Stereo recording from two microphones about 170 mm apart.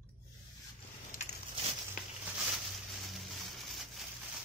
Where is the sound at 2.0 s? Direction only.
50° left (ahead or behind).